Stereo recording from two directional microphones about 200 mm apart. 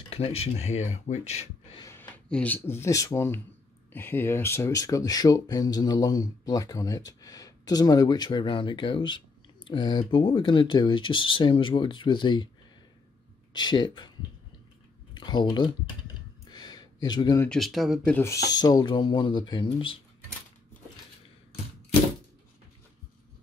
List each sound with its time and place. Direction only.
0.1 s speech: 30° left (ahead or behind)
1.8 s speech: 10° left (ahead or behind)
13.5 s speech: 20° left (ahead or behind)
15.1 s speech: 20° left (ahead or behind)
16.4 s a sound: 20° left (ahead or behind)
17.5 s speech: centre (ahead or behind)
18.1 s speech: 15° left (ahead or behind)